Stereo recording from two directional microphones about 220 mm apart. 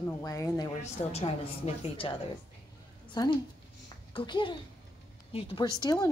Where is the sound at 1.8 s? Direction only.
25° left (ahead or behind).